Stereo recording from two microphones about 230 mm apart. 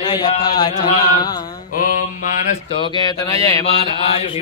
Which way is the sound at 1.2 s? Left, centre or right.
Centre.